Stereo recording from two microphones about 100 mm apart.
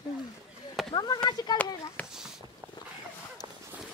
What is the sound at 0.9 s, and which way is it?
Speech, 40° left (ahead or behind).